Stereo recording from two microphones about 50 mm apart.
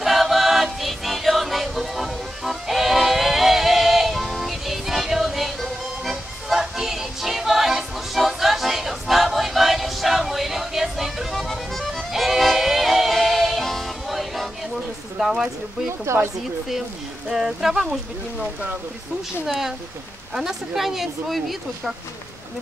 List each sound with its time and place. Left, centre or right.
0.0 s music: centre
15.1 s a sound: centre
15.9 s a woman's voice: right
17.3 s speech: centre
19.4 s speech: centre